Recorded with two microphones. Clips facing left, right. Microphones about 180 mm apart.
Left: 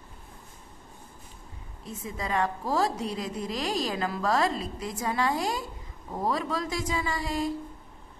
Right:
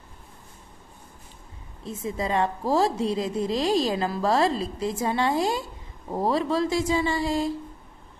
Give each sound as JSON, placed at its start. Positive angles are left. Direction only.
{"t": 1.9, "sound": "a woman's voice", "side_deg": -25}